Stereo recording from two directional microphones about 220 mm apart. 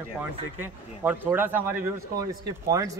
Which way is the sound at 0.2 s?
10° right (ahead or behind).